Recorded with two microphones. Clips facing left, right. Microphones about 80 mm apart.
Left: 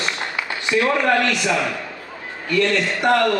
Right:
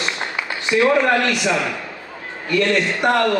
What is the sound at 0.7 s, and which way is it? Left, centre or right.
Speech, right.